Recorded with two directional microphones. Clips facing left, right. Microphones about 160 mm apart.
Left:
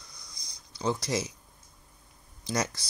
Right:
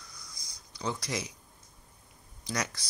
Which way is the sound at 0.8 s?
30° left (ahead or behind).